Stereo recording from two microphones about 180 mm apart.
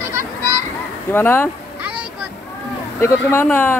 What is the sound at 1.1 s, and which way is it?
Speech, 10° left (ahead or behind).